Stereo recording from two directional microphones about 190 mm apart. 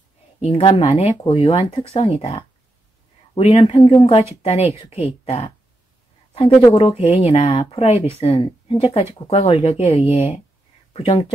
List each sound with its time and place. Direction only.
0.4 s speech: 30° left (ahead or behind)
6.7 s speech: 30° left (ahead or behind)
10.0 s speech: 10° right (ahead or behind)
10.9 s speech: 30° left (ahead or behind)